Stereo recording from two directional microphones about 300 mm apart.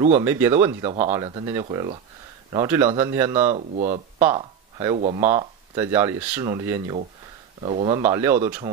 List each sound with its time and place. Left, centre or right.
0.2 s speech: centre
3.5 s speech: right
4.2 s speech: centre